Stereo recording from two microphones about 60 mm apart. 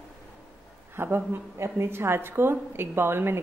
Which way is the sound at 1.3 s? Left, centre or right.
Right.